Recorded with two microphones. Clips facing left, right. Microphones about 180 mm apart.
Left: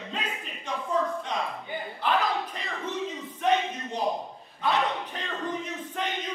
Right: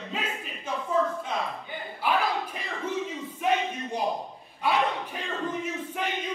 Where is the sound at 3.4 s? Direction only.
10° right (ahead or behind).